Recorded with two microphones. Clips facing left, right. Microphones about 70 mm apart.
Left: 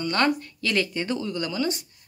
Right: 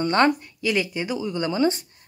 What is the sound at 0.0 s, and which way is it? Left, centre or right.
Speech, right.